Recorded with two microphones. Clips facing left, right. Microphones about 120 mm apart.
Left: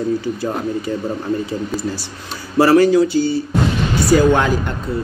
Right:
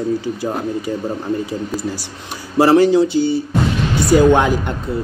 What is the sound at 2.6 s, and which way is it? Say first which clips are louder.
A man's voice: even; 20° right (ahead or behind).